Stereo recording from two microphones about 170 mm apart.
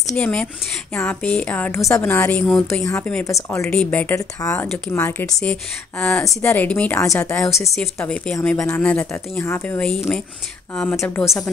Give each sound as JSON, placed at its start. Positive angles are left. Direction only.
{"t": 0.1, "sound": "a woman's voice", "side_deg": 5}
{"t": 2.7, "sound": "a woman's voice", "side_deg": 15}
{"t": 3.6, "sound": "a woman's voice", "side_deg": 5}
{"t": 4.6, "sound": "a woman's voice", "side_deg": 5}
{"t": 7.7, "sound": "speech", "side_deg": 5}
{"t": 8.5, "sound": "a woman's voice", "side_deg": 15}